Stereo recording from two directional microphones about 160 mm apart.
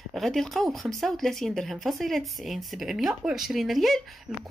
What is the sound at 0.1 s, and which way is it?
Speech, centre (ahead or behind).